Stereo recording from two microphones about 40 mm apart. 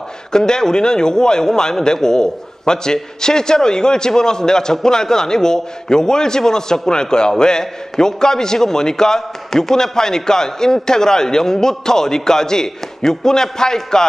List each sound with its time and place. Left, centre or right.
0.3 s a man's voice: centre